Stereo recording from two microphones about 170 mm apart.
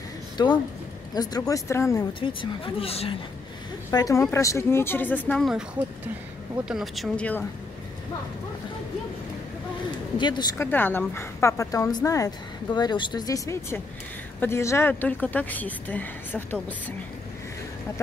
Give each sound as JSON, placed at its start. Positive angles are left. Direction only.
{"t": 0.4, "sound": "speech", "side_deg": 25}
{"t": 2.1, "sound": "speech", "side_deg": 30}
{"t": 3.9, "sound": "speech", "side_deg": 20}
{"t": 10.1, "sound": "speech", "side_deg": 25}
{"t": 10.6, "sound": "speech", "side_deg": 10}